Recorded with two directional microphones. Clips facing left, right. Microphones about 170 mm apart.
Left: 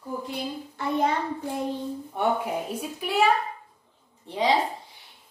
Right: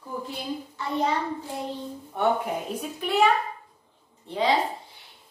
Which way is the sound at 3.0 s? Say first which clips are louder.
Right 2 dB; 10° left (ahead or behind).